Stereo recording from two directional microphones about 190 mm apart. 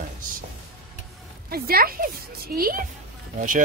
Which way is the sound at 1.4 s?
50° right (ahead or behind).